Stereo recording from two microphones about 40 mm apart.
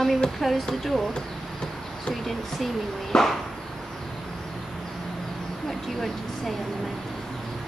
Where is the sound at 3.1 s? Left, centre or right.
Centre.